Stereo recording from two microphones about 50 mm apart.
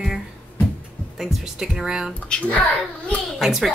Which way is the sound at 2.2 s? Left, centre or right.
Left.